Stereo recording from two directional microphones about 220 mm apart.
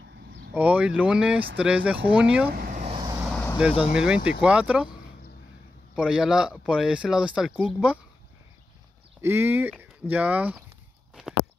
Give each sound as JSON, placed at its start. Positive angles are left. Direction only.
{"t": 0.6, "sound": "speech", "side_deg": -5}
{"t": 2.4, "sound": "a sound", "side_deg": -45}
{"t": 2.9, "sound": "vehicle", "side_deg": -20}
{"t": 3.2, "sound": "vehicle", "side_deg": 5}
{"t": 3.9, "sound": "speech", "side_deg": -5}
{"t": 5.9, "sound": "speech", "side_deg": -5}
{"t": 9.2, "sound": "speech", "side_deg": -10}